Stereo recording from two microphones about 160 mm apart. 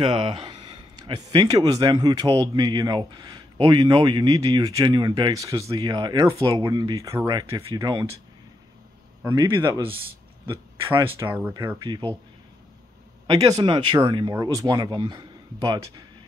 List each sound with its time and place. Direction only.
0.0 s speech: 30° right (ahead or behind)
9.2 s speech: 20° right (ahead or behind)
13.3 s speech: 25° right (ahead or behind)